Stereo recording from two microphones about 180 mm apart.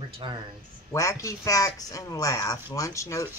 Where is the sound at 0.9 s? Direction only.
20° left (ahead or behind).